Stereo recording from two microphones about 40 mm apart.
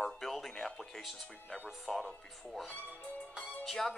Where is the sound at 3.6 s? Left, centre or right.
Centre.